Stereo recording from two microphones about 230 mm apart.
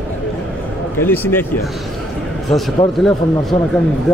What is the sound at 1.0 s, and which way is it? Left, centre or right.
Speech, centre.